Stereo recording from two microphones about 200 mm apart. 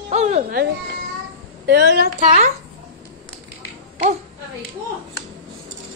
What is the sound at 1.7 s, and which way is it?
Speech, 60° right (ahead or behind).